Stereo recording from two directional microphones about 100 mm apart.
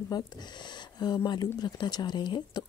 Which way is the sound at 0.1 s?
45° left (ahead or behind).